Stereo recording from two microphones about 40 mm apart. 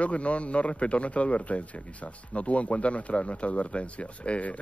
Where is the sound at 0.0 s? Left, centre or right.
Left.